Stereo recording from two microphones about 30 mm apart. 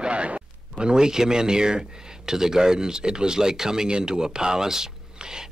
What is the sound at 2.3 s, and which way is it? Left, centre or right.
Speech, centre.